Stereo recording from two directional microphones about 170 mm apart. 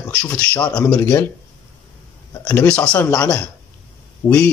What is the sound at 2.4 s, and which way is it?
Speech, 10° left (ahead or behind).